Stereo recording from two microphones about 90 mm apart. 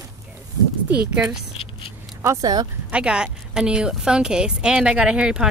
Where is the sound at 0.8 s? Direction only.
10° right (ahead or behind).